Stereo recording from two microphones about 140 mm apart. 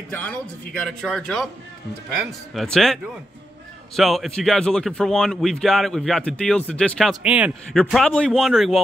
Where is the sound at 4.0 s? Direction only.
Centre (ahead or behind).